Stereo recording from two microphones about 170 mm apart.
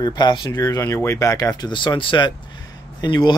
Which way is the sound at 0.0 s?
25° left (ahead or behind).